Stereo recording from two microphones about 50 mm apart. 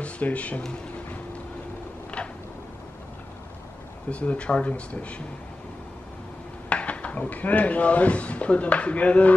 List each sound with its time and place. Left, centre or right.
0.0 s speech: left
2.1 s a sound: left
4.1 s speech: left
6.7 s speech: left